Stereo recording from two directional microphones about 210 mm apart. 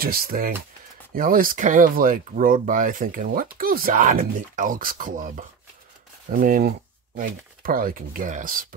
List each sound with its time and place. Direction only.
0.0 s speech: 45° right (ahead or behind)
6.4 s speech: 40° right (ahead or behind)